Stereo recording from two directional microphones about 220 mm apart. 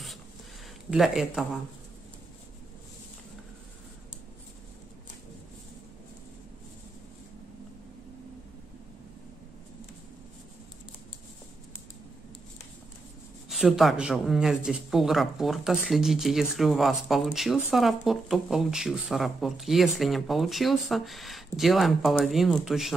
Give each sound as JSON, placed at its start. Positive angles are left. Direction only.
{"t": 0.8, "sound": "speech", "side_deg": 0}
{"t": 13.5, "sound": "speech", "side_deg": 0}